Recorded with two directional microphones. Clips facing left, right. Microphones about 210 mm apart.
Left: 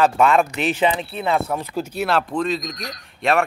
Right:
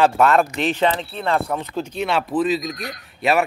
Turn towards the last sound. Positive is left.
turn(degrees=-5)  # may be behind; listen again after turning